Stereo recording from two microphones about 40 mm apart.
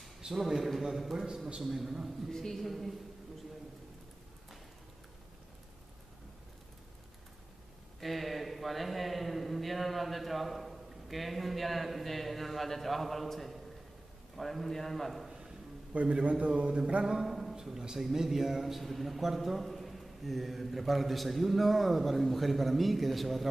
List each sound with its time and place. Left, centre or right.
0.3 s a man's voice: centre
1.6 s a man's voice: centre
2.2 s a man's voice: centre
8.0 s a man's voice: centre
15.2 s a sound: centre
16.1 s mantra: right
17.2 s a sound: centre
17.6 s a man's voice: centre